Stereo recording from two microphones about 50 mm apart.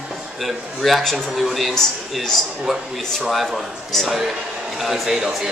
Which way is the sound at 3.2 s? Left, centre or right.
Centre.